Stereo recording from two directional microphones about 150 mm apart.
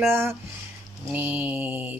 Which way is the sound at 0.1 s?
15° right (ahead or behind).